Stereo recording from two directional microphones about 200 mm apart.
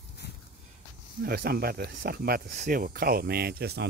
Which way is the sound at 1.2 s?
50° right (ahead or behind).